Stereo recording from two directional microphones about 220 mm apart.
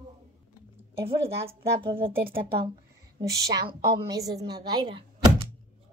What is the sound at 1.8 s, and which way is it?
Speech, 25° right (ahead or behind).